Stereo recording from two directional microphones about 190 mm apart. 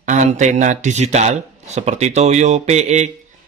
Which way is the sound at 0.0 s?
40° right (ahead or behind).